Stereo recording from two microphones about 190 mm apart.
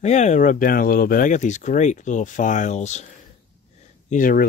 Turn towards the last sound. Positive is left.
turn(degrees=45)  # may be behind; listen again after turning